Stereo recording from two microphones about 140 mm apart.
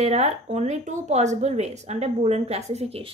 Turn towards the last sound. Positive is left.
turn(degrees=-45)  # may be behind; listen again after turning